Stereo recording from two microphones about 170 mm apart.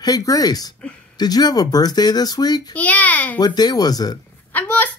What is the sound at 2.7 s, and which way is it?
Speech, 10° left (ahead or behind).